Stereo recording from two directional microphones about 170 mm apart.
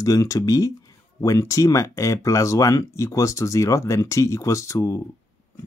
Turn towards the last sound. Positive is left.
turn(degrees=15)  # may be behind; listen again after turning